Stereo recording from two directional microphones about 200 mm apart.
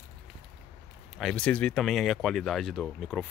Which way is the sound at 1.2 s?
5° left (ahead or behind).